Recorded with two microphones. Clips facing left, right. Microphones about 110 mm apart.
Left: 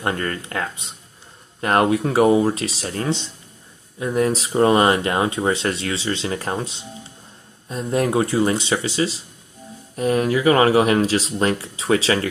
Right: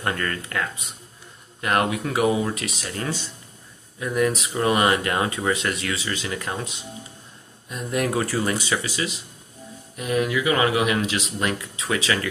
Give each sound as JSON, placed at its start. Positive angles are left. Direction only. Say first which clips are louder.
{"t": 0.0, "sound": "speech", "louder": "left 3 dB", "side_deg": 25}